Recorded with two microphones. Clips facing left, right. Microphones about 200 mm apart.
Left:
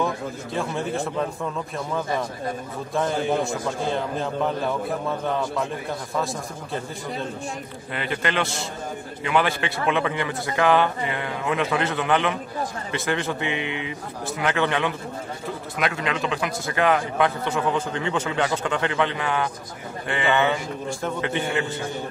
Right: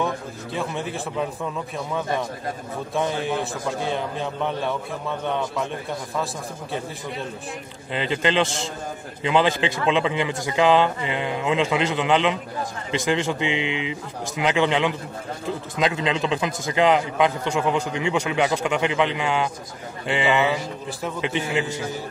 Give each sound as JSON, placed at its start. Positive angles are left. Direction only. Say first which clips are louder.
{"t": 0.6, "sound": "a man's voice", "louder": "left 2 dB", "side_deg": 0}
{"t": 2.9, "sound": "a man's voice", "louder": "left 2 dB", "side_deg": 0}
{"t": 7.9, "sound": "a man's voice", "louder": "right 4 dB", "side_deg": -20}